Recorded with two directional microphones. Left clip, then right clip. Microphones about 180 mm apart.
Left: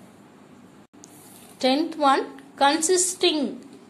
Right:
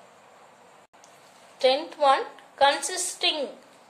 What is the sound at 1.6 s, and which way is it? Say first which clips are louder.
A woman's voice: even; 30° left (ahead or behind).